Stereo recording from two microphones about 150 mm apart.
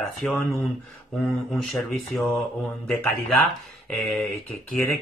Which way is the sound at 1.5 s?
Centre (ahead or behind).